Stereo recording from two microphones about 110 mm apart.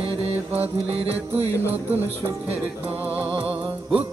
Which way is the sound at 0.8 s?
65° right (ahead or behind).